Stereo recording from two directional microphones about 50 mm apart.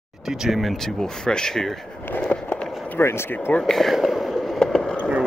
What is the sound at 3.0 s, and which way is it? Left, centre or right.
Speech, left.